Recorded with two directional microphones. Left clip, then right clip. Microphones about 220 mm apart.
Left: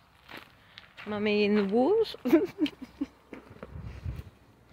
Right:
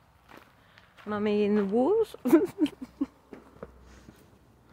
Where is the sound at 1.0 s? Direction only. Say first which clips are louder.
Even; 10° right (ahead or behind).